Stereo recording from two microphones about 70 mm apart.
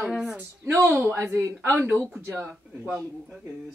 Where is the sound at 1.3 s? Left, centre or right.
Right.